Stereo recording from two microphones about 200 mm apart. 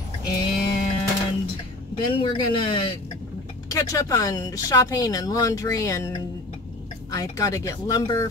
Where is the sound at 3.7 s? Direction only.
15° left (ahead or behind).